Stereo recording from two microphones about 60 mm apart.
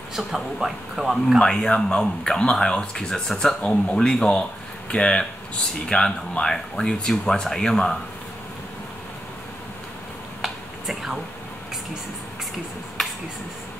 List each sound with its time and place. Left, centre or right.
0.1 s speech: centre
1.4 s speech: centre
10.4 s a sound: centre